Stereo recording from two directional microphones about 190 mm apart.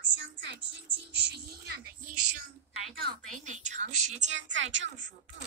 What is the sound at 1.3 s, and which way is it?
Speech, 55° right (ahead or behind).